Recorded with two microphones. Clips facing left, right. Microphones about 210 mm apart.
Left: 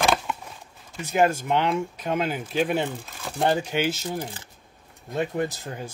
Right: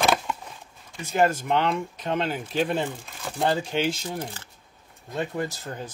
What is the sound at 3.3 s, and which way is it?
Speech, 20° left (ahead or behind).